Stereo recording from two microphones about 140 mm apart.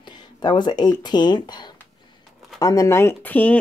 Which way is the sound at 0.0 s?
30° left (ahead or behind).